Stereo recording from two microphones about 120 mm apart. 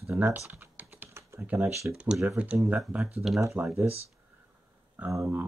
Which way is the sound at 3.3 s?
25° right (ahead or behind).